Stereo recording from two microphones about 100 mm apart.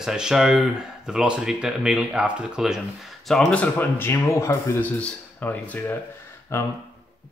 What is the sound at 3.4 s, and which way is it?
Speech, 15° left (ahead or behind).